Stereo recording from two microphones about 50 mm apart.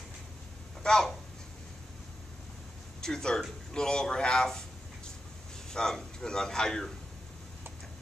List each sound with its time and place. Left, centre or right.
0.8 s a man's voice: centre
3.0 s a man's voice: centre
5.7 s a man's voice: centre